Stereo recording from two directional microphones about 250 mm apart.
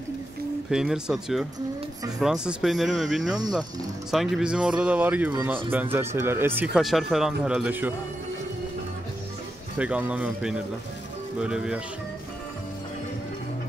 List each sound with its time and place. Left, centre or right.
0.7 s speech: centre
9.8 s speech: centre